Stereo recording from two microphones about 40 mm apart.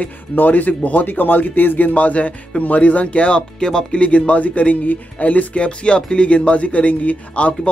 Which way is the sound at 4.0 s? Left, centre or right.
Left.